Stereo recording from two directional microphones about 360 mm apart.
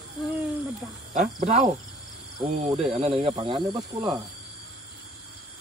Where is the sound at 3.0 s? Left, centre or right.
Centre.